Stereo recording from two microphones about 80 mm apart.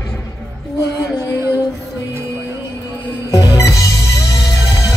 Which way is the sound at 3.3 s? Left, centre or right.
Left.